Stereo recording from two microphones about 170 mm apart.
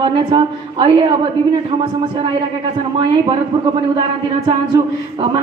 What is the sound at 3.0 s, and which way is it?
A man's voice, 30° right (ahead or behind).